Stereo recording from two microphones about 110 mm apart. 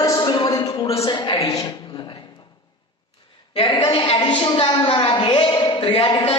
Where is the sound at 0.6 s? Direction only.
30° left (ahead or behind).